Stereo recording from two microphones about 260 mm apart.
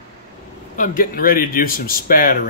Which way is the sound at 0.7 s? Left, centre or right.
Left.